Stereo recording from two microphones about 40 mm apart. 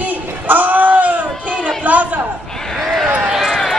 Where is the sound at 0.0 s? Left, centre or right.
Right.